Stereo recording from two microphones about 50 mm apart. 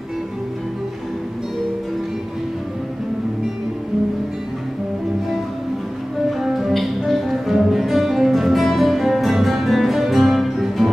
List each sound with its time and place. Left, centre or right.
6.4 s music: centre